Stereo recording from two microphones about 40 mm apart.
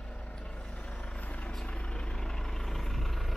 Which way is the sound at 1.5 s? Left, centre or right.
Left.